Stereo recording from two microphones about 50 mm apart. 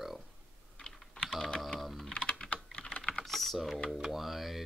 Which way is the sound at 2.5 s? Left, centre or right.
Left.